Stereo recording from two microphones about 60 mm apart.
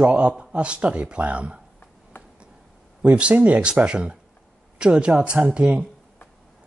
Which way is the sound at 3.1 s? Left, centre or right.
Right.